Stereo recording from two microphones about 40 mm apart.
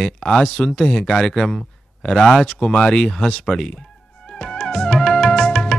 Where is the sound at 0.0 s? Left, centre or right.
Centre.